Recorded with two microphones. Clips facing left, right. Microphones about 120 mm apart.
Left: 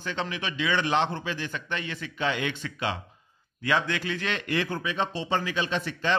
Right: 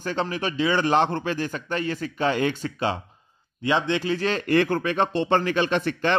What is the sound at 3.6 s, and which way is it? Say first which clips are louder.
Speech: right 4 dB; 25° right (ahead or behind).